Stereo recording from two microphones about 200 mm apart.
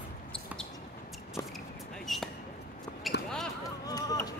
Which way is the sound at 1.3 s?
Centre (ahead or behind).